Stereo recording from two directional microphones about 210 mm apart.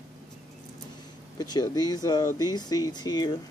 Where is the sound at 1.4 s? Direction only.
20° left (ahead or behind).